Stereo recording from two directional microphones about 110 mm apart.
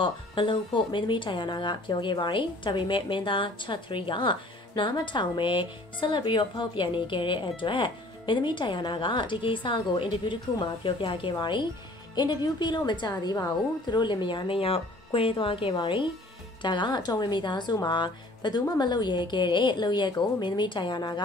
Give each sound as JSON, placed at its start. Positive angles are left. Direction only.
{"t": 0.0, "sound": "a woman's voice", "side_deg": 50}